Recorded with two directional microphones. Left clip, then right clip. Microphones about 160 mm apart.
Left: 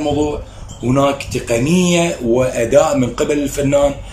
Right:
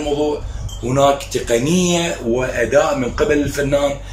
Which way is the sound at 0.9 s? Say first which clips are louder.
Right 2 dB; 10° left (ahead or behind).